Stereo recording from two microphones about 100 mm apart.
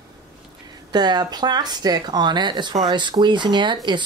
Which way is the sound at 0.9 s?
45° right (ahead or behind).